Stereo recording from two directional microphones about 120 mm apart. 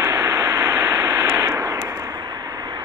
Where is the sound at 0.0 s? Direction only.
25° right (ahead or behind).